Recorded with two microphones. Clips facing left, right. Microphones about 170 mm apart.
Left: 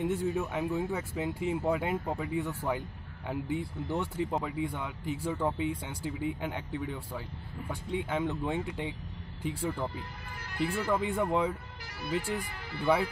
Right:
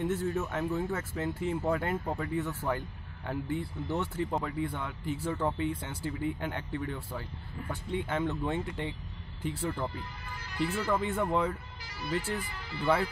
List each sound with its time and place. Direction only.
0.0 s speech: 10° left (ahead or behind)
11.8 s music: 55° left (ahead or behind)
12.1 s speech: 15° left (ahead or behind)